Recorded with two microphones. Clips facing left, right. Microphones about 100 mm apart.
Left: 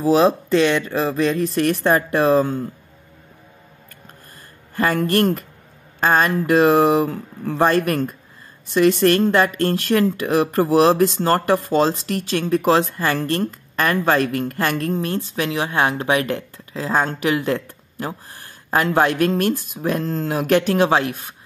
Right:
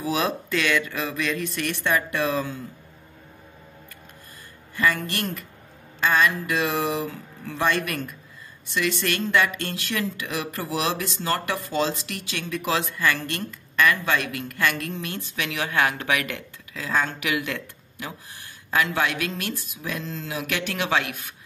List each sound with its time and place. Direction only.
0.0 s speech: 35° left (ahead or behind)
4.7 s speech: 45° left (ahead or behind)